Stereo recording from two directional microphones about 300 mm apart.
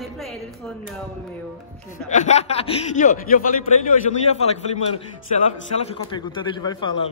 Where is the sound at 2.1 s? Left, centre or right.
Left.